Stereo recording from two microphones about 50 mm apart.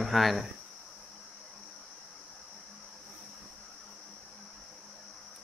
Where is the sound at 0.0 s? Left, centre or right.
Centre.